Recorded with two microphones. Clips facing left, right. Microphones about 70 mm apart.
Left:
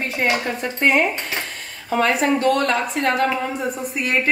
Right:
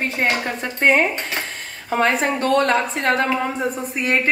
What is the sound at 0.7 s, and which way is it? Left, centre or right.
A woman's voice, right.